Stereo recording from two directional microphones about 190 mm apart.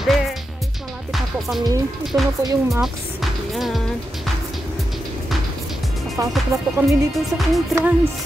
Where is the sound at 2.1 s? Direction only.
15° right (ahead or behind).